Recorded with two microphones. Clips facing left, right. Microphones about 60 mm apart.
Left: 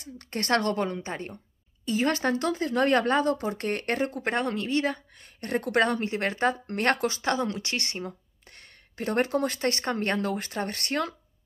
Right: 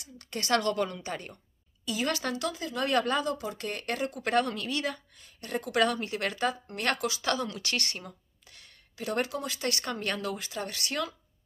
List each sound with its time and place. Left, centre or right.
0.0 s a woman's voice: left
4.2 s speech: left
5.1 s speech: left
5.8 s a woman's voice: left
8.5 s speech: left